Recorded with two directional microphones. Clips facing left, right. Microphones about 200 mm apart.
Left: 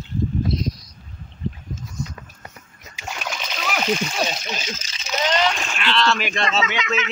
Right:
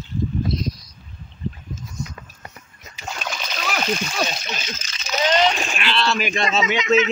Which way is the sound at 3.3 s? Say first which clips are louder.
Even; 10° left (ahead or behind).